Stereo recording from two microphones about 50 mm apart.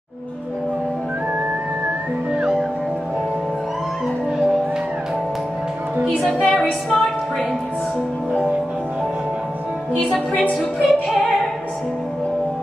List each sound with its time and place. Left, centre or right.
6.4 s music: centre
8.3 s music: right
10.5 s music: centre